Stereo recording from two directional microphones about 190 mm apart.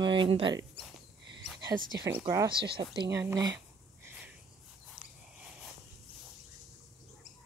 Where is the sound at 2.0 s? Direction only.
15° right (ahead or behind).